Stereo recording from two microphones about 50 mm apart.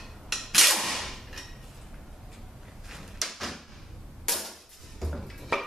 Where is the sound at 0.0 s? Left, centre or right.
Centre.